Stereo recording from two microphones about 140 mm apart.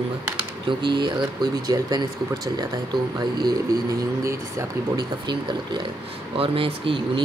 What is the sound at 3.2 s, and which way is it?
Speech, 30° right (ahead or behind).